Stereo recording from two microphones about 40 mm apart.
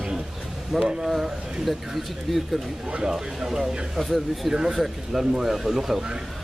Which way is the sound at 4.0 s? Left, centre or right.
Centre.